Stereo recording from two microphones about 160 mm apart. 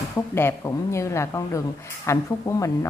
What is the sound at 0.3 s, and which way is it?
Speech, 15° left (ahead or behind).